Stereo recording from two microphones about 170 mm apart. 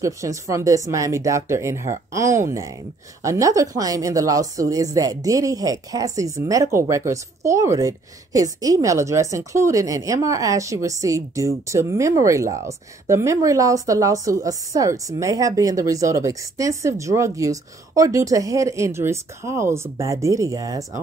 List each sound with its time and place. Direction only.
0.0 s a woman's voice: 20° right (ahead or behind)